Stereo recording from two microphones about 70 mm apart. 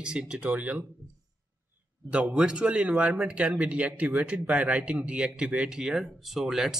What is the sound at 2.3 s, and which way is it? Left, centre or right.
Speech, centre.